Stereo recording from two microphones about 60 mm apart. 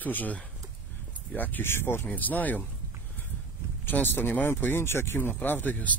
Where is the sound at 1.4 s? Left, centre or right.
Left.